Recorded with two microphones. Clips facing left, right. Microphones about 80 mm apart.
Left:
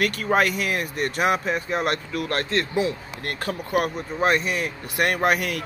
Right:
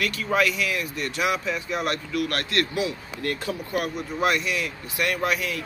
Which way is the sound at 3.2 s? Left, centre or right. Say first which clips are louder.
Even; left.